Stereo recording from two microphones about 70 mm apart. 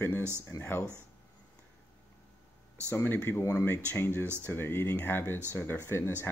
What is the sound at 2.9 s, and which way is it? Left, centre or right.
Speech, left.